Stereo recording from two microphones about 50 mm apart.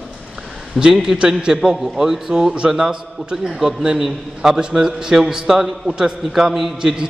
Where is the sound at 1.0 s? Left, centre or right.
Centre.